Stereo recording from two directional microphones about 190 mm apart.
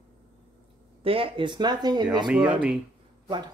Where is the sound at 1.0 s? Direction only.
30° right (ahead or behind).